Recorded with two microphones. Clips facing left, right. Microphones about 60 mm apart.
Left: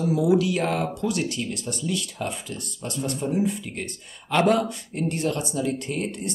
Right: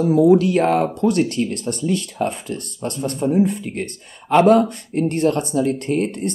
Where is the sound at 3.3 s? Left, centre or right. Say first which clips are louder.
Right 7 dB; right.